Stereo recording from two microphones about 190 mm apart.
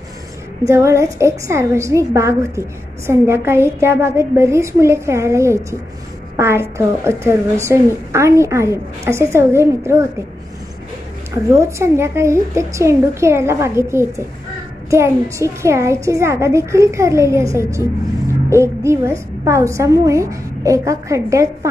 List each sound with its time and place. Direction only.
0.7 s a child's voice: 15° right (ahead or behind)
11.5 s a child's voice: 15° right (ahead or behind)